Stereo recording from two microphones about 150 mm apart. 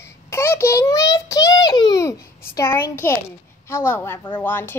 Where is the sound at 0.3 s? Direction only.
15° left (ahead or behind).